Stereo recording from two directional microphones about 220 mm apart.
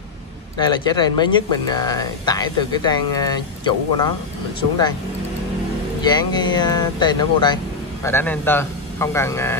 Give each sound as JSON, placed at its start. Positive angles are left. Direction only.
{"t": 0.6, "sound": "speech", "side_deg": 20}
{"t": 6.0, "sound": "speech", "side_deg": 20}